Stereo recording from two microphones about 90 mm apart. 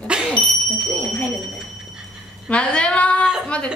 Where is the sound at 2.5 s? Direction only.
15° left (ahead or behind).